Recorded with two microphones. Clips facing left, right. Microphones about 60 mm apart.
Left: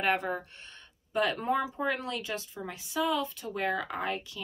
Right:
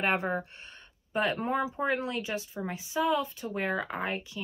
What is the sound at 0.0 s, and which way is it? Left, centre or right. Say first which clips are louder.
Speech: right 1 dB; centre.